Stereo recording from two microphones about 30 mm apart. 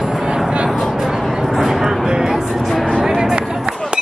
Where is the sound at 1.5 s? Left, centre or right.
Centre.